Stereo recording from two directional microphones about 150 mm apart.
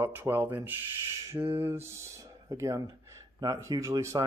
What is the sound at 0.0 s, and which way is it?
Speech, 15° right (ahead or behind).